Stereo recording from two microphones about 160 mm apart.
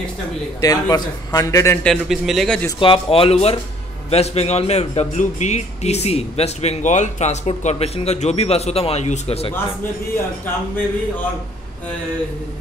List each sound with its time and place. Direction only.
0.6 s a man's voice: 20° left (ahead or behind)
1.9 s speech: centre (ahead or behind)
2.8 s a man's voice: 35° left (ahead or behind)